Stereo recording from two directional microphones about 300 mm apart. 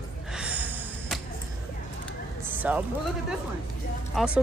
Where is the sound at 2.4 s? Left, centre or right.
Centre.